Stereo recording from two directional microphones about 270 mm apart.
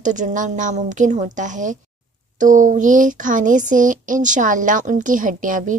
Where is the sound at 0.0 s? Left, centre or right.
Right.